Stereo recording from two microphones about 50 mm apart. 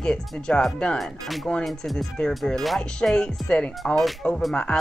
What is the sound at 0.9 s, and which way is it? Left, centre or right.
A woman's voice, centre.